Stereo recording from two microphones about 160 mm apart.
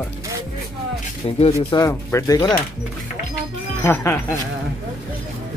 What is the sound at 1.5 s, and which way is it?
Speech, 20° left (ahead or behind).